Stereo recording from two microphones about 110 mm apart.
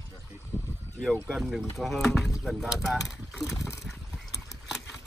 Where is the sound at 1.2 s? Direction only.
Centre (ahead or behind).